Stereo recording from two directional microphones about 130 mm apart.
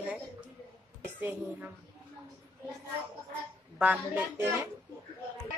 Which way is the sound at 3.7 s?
10° right (ahead or behind).